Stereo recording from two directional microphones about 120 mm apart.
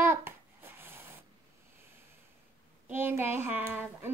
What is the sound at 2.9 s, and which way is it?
A child's voice, 15° right (ahead or behind).